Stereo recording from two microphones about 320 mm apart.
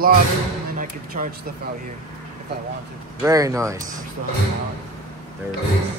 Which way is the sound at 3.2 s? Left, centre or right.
Centre.